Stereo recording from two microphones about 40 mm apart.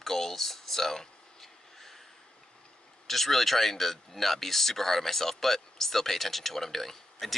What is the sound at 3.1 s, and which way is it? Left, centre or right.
Speech, centre.